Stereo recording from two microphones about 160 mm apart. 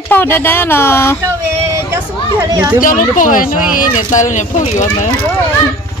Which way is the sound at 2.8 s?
55° left (ahead or behind).